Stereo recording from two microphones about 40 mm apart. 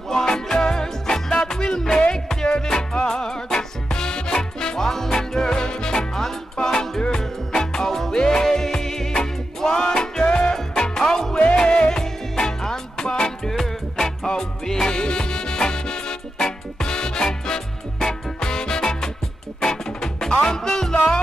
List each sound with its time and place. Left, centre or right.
0.1 s music: centre
13.5 s music: centre